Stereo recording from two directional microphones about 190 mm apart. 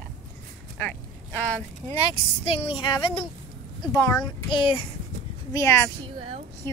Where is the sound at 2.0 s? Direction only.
30° left (ahead or behind).